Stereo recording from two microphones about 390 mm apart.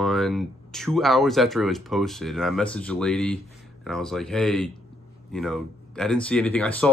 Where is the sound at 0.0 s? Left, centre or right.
Centre.